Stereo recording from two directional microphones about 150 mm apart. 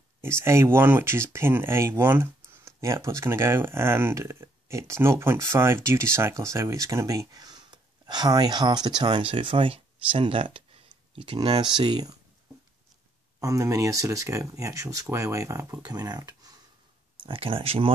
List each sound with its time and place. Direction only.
0.2 s speech: 15° right (ahead or behind)
13.4 s speech: 20° right (ahead or behind)
17.2 s speech: 35° right (ahead or behind)